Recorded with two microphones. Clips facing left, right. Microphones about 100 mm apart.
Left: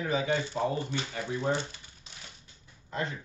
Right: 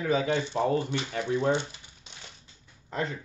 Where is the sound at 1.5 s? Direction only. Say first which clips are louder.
Right 3 dB; 20° right (ahead or behind).